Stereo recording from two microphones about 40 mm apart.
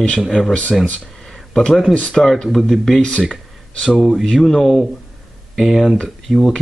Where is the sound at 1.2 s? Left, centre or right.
Centre.